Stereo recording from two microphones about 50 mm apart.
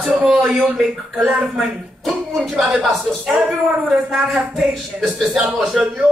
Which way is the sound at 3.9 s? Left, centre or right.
Centre.